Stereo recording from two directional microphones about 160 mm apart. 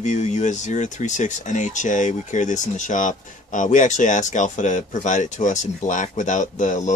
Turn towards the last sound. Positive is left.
turn(degrees=50)  # may be behind; listen again after turning